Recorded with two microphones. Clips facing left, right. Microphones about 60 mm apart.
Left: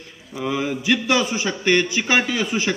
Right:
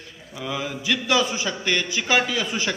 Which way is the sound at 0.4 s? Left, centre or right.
Left.